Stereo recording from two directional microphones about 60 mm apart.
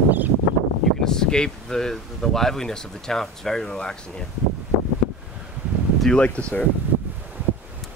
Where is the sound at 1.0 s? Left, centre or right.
Centre.